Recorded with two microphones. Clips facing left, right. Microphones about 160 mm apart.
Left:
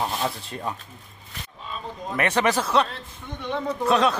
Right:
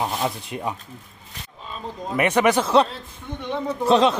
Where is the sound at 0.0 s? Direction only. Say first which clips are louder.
Right 2 dB; 15° right (ahead or behind).